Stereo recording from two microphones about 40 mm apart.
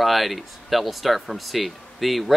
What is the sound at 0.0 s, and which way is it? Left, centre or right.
Speech, centre.